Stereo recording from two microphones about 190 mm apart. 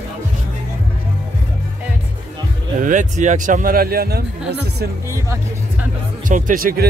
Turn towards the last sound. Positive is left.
turn(degrees=-50)  # may be behind; listen again after turning